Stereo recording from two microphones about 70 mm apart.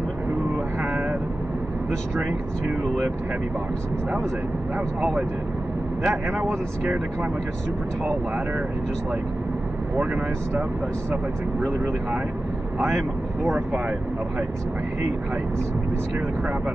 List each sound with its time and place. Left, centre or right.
6.0 s speech: centre
12.7 s speech: centre